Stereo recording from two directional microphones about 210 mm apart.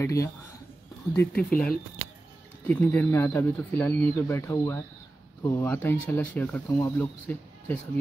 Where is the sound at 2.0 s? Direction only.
15° right (ahead or behind).